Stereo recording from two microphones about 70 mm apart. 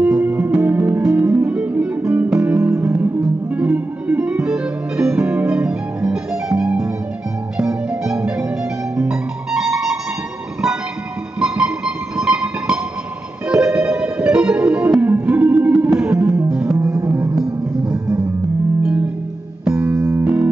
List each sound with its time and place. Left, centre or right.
0.0 s music: centre
1.1 s guitar: right
3.5 s music: centre
11.3 s music: centre
19.6 s music: centre